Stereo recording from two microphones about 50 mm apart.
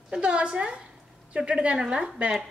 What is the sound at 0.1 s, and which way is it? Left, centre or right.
A woman's voice, centre.